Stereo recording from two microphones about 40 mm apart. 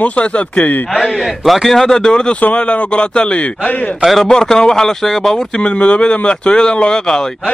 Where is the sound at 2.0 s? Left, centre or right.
Centre; by 3.9 s left.